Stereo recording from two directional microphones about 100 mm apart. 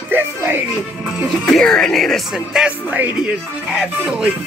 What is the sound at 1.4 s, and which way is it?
Speech, 5° left (ahead or behind).